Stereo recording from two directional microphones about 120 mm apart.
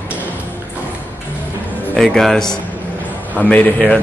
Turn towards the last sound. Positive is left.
turn(degrees=10)  # may be behind; listen again after turning